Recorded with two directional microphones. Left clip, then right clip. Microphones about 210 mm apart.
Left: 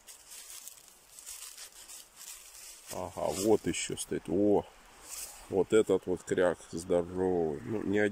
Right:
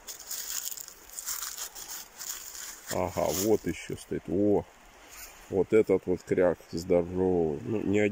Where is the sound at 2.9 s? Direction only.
5° left (ahead or behind).